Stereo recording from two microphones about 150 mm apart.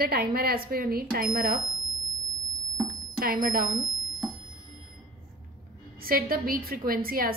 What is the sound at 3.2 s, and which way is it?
Speech, 80° right.